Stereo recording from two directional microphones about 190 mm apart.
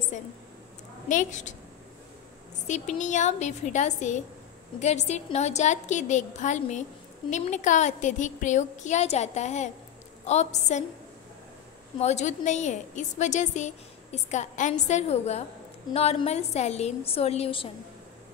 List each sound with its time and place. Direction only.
1.0 s a woman's voice: 40° left (ahead or behind)
3.0 s a woman's voice: 40° left (ahead or behind)
12.0 s a woman's voice: 35° left (ahead or behind)